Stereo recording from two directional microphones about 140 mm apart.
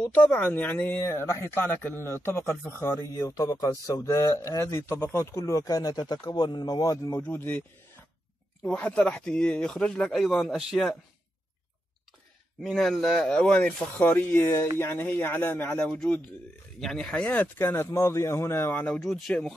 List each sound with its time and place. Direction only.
0.0 s a man's voice: 10° left (ahead or behind)
7.2 s speech: 15° left (ahead or behind)
12.6 s speech: centre (ahead or behind)
18.9 s speech: centre (ahead or behind)